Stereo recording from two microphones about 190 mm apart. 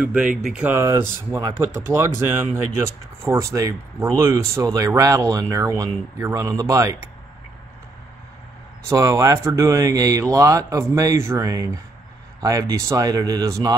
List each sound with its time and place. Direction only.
0.0 s speech: 5° right (ahead or behind)
8.8 s speech: 15° right (ahead or behind)